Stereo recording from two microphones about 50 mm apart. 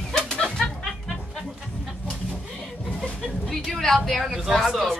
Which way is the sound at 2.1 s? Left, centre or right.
Centre.